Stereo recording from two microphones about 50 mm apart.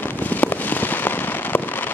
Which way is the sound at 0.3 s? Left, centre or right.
Left.